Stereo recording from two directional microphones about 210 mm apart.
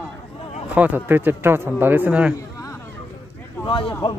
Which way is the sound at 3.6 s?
20° left (ahead or behind).